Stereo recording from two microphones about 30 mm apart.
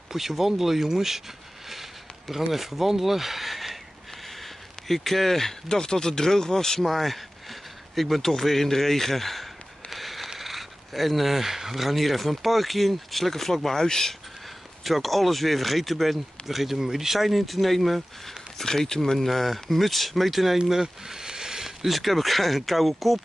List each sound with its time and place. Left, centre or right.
0.1 s speech: centre
6.8 s speech: centre
8.3 s a sound: centre
10.4 s speech: centre
14.8 s speech: centre
18.6 s speech: centre
19.1 s speech: centre
21.1 s a sound: right
21.6 s speech: centre